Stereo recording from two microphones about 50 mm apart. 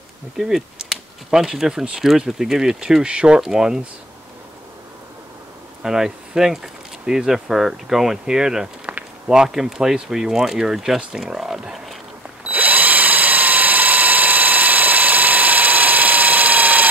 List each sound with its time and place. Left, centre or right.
0.4 s speech: centre
3.3 s speech: centre
5.8 s speech: centre
12.4 s drill: right